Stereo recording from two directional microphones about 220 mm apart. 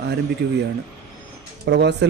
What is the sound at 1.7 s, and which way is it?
Speech, 50° right (ahead or behind).